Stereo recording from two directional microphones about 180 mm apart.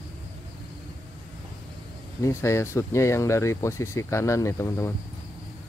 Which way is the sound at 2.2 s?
15° left (ahead or behind).